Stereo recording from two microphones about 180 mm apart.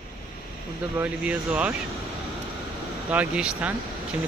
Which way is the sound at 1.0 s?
10° right (ahead or behind).